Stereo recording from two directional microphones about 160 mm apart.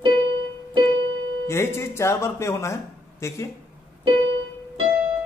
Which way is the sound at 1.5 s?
15° left (ahead or behind).